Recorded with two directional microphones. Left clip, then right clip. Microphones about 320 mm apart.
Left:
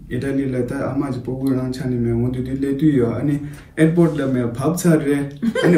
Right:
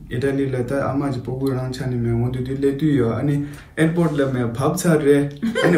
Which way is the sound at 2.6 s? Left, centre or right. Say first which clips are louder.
Left 1 dB; centre.